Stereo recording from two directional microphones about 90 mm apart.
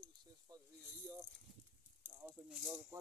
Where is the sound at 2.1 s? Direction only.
20° right (ahead or behind).